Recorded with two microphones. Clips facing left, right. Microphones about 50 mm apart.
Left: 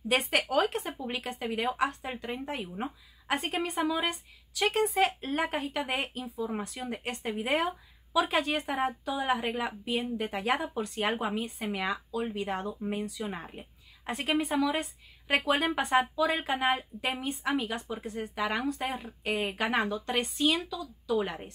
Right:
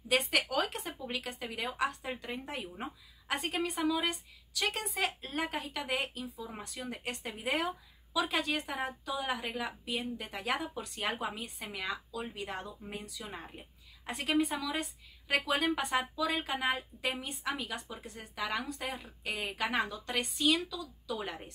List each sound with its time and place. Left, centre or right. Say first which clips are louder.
0.1 s a woman's voice: left 3 dB; left
4.9 s speech: left 7 dB; left
6.6 s a woman's voice: left 4 dB; centre